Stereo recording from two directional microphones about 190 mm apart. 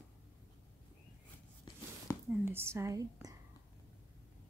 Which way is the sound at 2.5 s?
15° right (ahead or behind).